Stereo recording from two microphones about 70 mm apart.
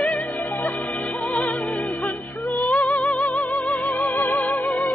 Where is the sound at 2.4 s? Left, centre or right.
Left.